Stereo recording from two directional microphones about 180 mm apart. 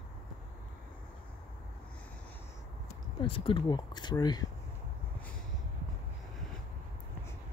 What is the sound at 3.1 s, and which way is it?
Speech, 30° left (ahead or behind).